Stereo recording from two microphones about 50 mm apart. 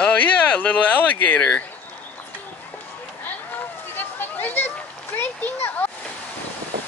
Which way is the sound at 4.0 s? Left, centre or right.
Left.